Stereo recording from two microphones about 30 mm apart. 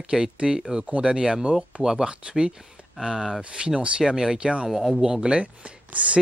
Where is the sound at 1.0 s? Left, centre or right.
Right.